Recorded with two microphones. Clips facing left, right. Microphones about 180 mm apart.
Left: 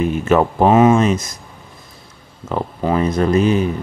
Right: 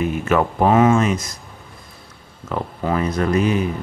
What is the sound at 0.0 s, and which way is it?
Speech, 30° left (ahead or behind).